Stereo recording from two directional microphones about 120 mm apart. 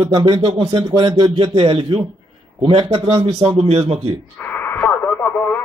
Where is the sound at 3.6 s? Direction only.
60° right (ahead or behind).